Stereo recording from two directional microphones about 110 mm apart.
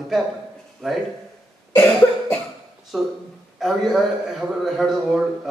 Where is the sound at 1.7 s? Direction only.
15° left (ahead or behind).